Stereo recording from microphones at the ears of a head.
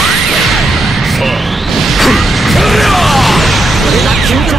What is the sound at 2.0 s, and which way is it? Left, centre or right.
Music, centre.